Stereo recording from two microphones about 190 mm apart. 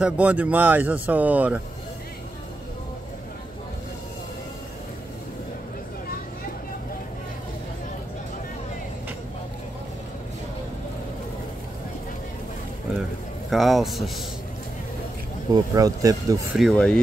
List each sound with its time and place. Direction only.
0.0 s speech: 5° right (ahead or behind)
13.5 s speech: centre (ahead or behind)
15.5 s speech: 20° right (ahead or behind)
16.5 s speech: 5° left (ahead or behind)